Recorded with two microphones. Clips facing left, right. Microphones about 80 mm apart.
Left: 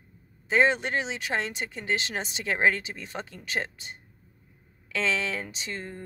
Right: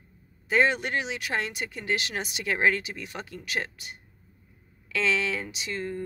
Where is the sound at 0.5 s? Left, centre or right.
Left.